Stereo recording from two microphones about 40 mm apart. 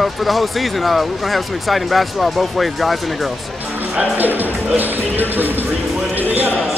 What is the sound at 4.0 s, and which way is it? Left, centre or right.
Speech, right.